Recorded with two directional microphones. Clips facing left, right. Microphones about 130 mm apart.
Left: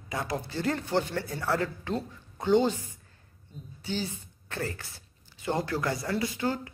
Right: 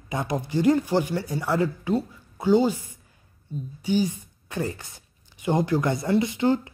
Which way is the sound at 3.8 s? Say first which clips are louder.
Right 9 dB; 15° right (ahead or behind).